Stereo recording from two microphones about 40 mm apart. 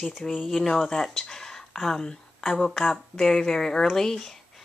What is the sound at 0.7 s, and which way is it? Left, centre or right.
A woman's voice, centre.